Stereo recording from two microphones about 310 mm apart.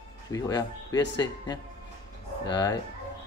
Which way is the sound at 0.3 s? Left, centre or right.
Centre.